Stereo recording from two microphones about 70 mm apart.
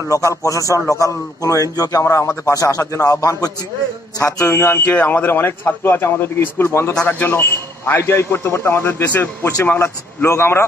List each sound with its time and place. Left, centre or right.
0.1 s a man's voice: left
2.0 s a man's voice: left
9.8 s speech: left